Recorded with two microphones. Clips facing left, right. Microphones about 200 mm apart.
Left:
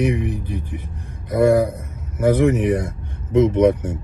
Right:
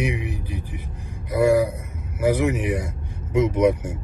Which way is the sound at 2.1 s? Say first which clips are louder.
Left 4 dB; 10° right (ahead or behind).